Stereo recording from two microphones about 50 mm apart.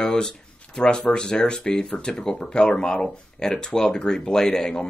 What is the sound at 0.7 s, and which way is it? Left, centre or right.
Speech, centre.